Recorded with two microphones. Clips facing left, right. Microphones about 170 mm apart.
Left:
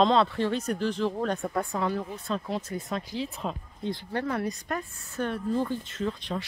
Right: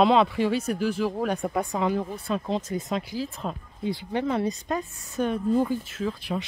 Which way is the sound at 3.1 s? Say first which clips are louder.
Right 1 dB; centre (ahead or behind).